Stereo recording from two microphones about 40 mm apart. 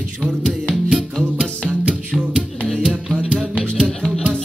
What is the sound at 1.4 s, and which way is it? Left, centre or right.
Music, right.